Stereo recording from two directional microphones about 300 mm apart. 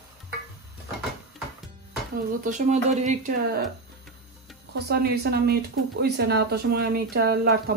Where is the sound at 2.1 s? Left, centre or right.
Right.